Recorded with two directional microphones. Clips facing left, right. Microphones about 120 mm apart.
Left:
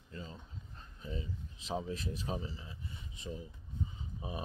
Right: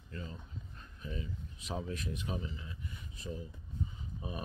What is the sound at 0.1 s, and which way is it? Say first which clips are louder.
Speech: right 2 dB; 25° left (ahead or behind).